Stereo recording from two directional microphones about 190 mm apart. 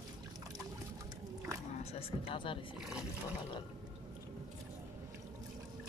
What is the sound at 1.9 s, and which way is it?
Music, 30° left (ahead or behind).